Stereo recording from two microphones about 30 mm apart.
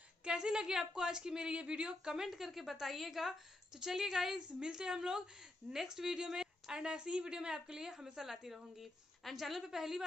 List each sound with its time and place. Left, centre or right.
0.2 s a woman's voice: right
2.2 s a woman's voice: centre
6.1 s a woman's voice: right